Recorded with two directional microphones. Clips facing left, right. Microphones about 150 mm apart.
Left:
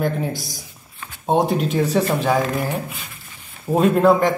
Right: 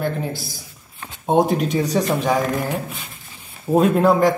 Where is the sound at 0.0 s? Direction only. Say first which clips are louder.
Left 2 dB; 15° left (ahead or behind).